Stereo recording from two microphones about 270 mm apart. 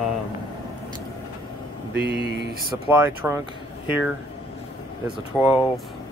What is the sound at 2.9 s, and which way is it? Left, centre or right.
Speech, centre.